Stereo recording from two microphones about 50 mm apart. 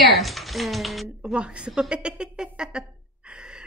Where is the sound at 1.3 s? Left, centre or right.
Centre.